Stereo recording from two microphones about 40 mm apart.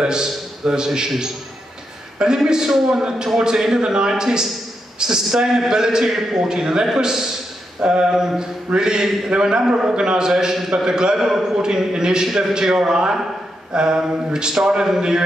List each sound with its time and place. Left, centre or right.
0.0 s a man's voice: centre
12.3 s a man's voice: centre